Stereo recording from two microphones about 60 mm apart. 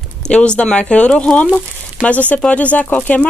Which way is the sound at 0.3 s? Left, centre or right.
Centre.